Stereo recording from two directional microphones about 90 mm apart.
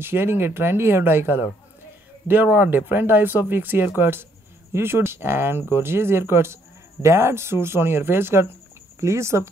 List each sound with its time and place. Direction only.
0.0 s speech: 25° right (ahead or behind)